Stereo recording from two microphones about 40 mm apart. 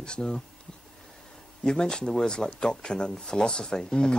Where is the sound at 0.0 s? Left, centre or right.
Left.